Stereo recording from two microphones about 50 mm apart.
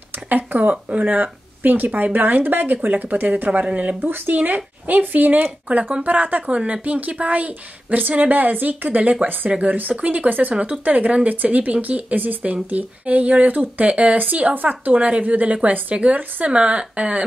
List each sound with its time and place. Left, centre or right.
0.3 s speech: right
9.5 s speech: right